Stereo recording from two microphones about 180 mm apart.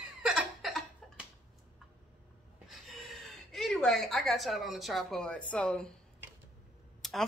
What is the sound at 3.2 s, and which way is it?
A woman's voice, centre (ahead or behind).